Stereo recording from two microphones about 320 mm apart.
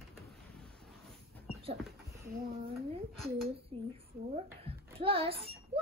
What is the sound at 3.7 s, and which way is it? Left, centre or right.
A child's voice, centre.